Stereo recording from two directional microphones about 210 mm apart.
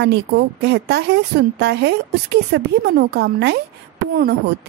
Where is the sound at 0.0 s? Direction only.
55° right (ahead or behind).